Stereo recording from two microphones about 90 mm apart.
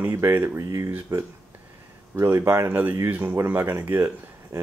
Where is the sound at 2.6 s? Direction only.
20° right (ahead or behind).